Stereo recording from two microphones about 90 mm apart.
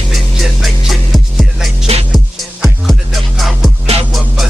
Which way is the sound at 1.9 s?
90° right.